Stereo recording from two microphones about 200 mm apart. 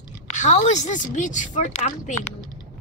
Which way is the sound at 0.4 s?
35° left (ahead or behind).